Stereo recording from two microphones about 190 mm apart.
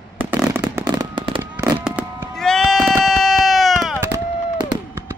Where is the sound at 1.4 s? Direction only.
10° right (ahead or behind).